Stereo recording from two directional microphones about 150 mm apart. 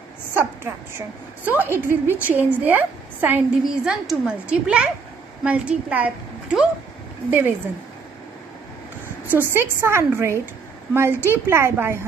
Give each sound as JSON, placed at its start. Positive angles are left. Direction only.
{"t": 0.4, "sound": "a woman's voice", "side_deg": -15}
{"t": 7.2, "sound": "a woman's voice", "side_deg": -15}
{"t": 9.3, "sound": "a woman's voice", "side_deg": -15}